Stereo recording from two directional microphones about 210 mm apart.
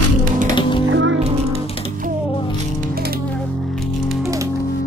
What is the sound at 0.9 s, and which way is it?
Music, 65° right (ahead or behind).